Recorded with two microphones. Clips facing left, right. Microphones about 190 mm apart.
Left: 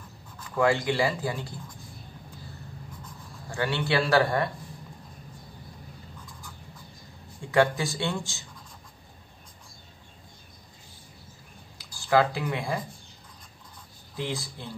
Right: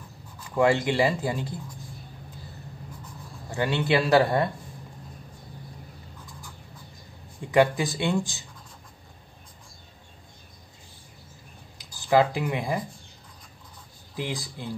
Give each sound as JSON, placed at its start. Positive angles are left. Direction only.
{"t": 0.6, "sound": "a man's voice", "side_deg": -25}
{"t": 3.4, "sound": "a man's voice", "side_deg": -20}
{"t": 7.5, "sound": "speech", "side_deg": -15}
{"t": 11.8, "sound": "speech", "side_deg": -20}
{"t": 14.1, "sound": "speech", "side_deg": -15}